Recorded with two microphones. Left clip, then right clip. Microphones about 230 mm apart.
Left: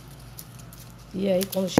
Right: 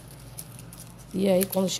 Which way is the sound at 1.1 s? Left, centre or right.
Centre.